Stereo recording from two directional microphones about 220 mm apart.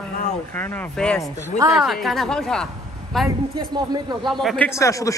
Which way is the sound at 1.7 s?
Centre (ahead or behind).